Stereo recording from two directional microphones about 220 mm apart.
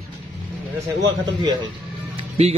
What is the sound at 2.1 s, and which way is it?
Music, 30° right (ahead or behind).